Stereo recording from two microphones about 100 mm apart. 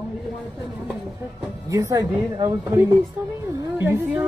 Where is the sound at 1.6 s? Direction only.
30° right (ahead or behind).